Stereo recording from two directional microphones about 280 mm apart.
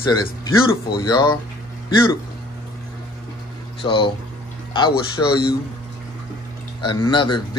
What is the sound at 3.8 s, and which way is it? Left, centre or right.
Speech, centre.